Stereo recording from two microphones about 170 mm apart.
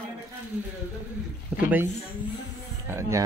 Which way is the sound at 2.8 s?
15° right (ahead or behind).